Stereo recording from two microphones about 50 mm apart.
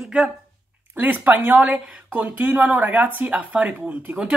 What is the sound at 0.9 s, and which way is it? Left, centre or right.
Speech, right.